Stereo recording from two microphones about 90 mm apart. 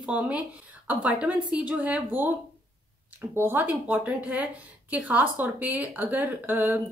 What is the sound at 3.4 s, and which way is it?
A woman's voice, 25° right (ahead or behind).